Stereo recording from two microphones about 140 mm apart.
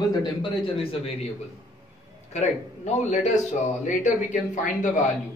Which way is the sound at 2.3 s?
55° left (ahead or behind).